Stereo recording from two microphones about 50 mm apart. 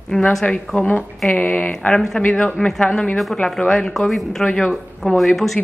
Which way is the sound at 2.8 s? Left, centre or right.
Left.